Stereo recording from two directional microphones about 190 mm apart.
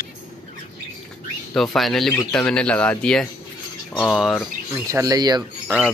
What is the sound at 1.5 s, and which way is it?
Speech, centre (ahead or behind).